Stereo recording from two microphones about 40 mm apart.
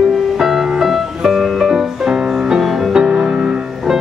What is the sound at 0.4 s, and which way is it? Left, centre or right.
Music, centre.